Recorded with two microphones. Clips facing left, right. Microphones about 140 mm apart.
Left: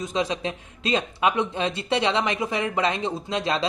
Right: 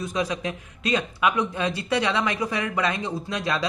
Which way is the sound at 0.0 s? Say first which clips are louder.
Left 1 dB; 25° left (ahead or behind).